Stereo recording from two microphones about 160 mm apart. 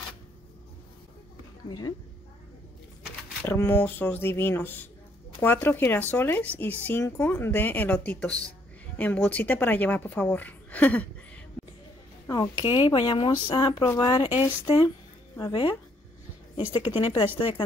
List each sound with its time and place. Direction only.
1.7 s speech: 25° left (ahead or behind)
3.4 s speech: 15° left (ahead or behind)
12.3 s speech: 25° left (ahead or behind)
15.5 s a woman's voice: 30° left (ahead or behind)